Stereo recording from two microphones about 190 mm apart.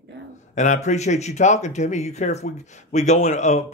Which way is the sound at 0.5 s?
40° left (ahead or behind).